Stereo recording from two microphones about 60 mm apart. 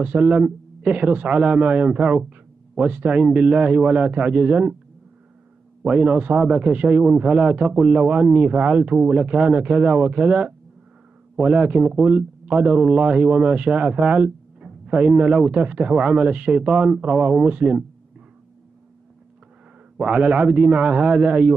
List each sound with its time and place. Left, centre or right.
0.0 s speech: right
5.9 s speech: centre
20.0 s speech: right